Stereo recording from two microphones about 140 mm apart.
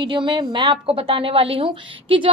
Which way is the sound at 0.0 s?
35° right (ahead or behind).